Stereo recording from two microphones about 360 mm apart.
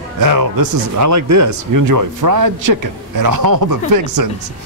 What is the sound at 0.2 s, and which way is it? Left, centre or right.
Speech, right.